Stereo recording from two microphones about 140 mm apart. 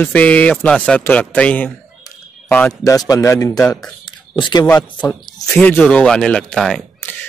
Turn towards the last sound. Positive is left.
turn(degrees=5)  # may be behind; listen again after turning